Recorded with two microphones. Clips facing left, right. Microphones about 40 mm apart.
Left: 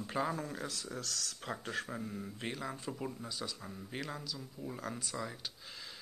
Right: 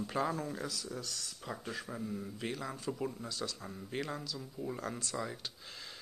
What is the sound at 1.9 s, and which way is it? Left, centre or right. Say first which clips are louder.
Speech: right 1 dB; left.